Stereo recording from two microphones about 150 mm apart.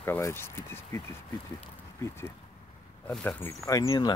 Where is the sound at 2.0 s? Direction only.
15° left (ahead or behind).